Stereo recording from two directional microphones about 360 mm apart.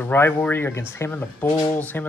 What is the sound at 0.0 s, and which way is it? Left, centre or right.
Speech, centre.